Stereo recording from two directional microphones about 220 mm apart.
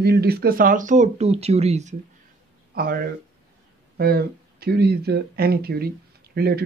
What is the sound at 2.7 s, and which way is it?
Speech, 40° right (ahead or behind).